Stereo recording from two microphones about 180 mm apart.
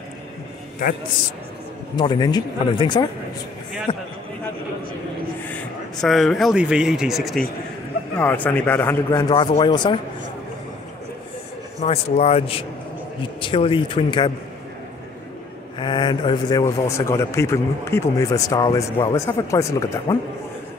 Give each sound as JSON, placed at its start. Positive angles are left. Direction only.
{"t": 2.0, "sound": "speech", "side_deg": 25}
{"t": 5.5, "sound": "speech", "side_deg": 0}
{"t": 8.2, "sound": "speech", "side_deg": 10}
{"t": 11.8, "sound": "speech", "side_deg": 35}
{"t": 15.8, "sound": "a man's voice", "side_deg": 25}